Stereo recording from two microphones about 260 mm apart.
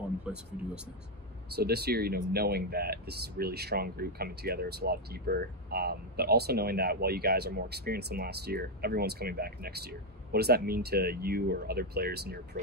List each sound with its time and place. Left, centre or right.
0.3 s speech: centre
1.5 s speech: right